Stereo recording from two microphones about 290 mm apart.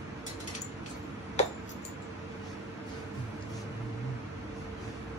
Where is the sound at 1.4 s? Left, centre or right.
Left.